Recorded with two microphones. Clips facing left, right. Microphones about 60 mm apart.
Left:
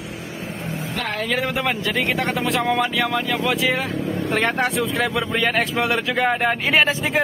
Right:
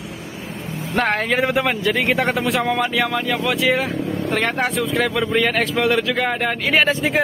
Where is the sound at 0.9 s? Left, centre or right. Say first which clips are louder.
Right 7 dB; right.